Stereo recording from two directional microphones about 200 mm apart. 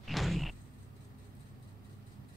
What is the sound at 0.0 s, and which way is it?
Sliding door, centre (ahead or behind).